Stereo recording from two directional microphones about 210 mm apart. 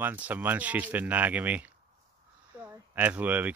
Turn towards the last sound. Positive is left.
turn(degrees=-10)  # may be behind; listen again after turning